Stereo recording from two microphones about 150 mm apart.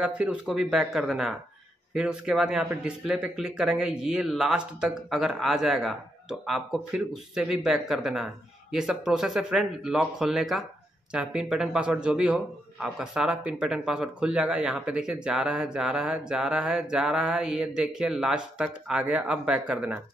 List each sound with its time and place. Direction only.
0.0 s a man's voice: 10° right (ahead or behind)